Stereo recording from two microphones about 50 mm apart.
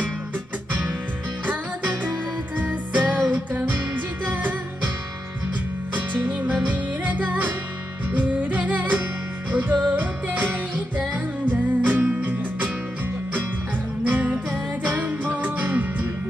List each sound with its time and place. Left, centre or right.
1.4 s music: right
5.9 s music: right
11.5 s music: right
14.0 s music: right